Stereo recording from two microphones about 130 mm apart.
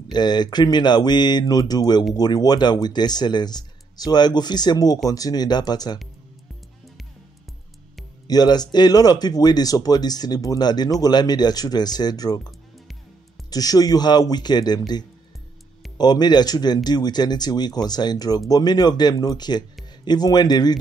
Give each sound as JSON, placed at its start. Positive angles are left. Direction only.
{"t": 0.1, "sound": "speech", "side_deg": 35}
{"t": 8.3, "sound": "speech", "side_deg": 30}
{"t": 13.5, "sound": "speech", "side_deg": 30}